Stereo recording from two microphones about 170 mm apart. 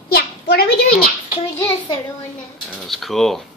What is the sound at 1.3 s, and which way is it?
Speech, 20° left (ahead or behind).